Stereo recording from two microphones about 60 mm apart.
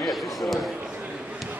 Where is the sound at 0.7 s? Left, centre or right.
Centre.